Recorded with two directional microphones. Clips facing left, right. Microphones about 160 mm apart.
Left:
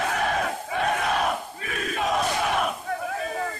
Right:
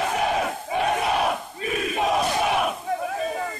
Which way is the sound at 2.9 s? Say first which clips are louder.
Right 3 dB; 20° right (ahead or behind).